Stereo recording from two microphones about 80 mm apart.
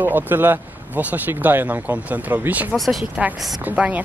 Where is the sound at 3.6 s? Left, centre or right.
Centre.